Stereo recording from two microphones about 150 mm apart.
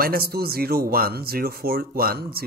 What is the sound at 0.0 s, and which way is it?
A man's voice, 85° right.